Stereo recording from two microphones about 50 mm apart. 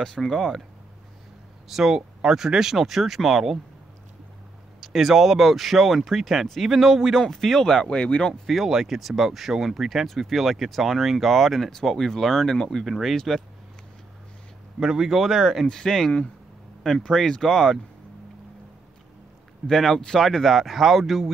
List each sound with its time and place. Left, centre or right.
0.0 s speech: centre
1.7 s speech: centre
4.7 s speech: centre
8.5 s speech: centre
14.8 s speech: centre
15.6 s speech: centre
19.7 s speech: centre